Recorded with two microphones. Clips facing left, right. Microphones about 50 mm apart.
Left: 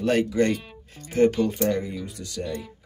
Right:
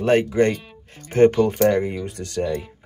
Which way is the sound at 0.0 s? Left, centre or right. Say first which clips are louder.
Right 4 dB; right.